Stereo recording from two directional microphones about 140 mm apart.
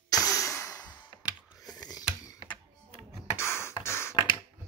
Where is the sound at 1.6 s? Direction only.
25° left (ahead or behind).